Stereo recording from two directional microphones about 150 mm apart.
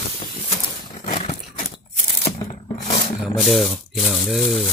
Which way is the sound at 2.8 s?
55° left (ahead or behind).